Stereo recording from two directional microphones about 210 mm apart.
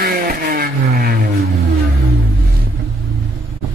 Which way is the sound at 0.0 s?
45° right (ahead or behind).